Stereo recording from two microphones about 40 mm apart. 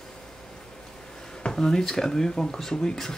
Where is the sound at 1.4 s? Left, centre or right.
Centre.